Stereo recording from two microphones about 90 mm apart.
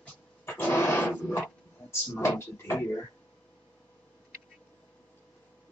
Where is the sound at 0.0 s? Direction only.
20° left (ahead or behind).